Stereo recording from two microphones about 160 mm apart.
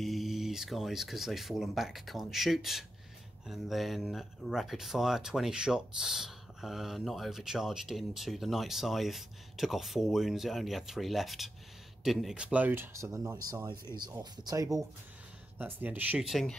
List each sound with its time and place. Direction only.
0.0 s speech: centre (ahead or behind); by 14.8 s 20° right (ahead or behind)
15.5 s speech: 10° right (ahead or behind)